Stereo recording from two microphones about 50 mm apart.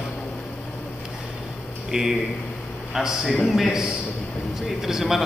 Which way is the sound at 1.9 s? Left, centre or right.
Centre.